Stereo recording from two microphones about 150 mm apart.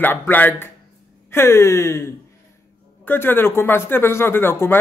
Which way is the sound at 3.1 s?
15° left (ahead or behind).